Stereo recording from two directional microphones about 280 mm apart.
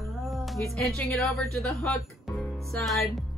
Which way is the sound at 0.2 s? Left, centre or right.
Centre.